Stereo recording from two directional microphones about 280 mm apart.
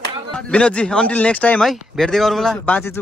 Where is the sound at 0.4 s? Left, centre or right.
Centre.